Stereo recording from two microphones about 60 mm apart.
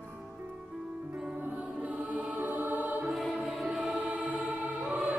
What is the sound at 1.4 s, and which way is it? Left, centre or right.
Music, right.